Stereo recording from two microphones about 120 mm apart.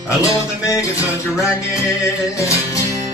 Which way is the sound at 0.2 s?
25° left (ahead or behind).